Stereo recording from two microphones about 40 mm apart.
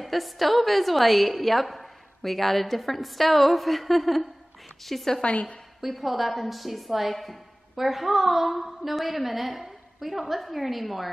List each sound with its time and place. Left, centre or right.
0.0 s a woman's voice: centre
5.2 s a woman's voice: left
5.8 s a woman's voice: centre